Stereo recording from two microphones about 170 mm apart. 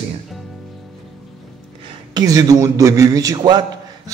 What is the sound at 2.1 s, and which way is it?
A man's voice, 20° right (ahead or behind).